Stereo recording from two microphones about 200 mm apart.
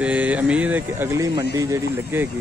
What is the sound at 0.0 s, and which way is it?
Speech, 5° right (ahead or behind).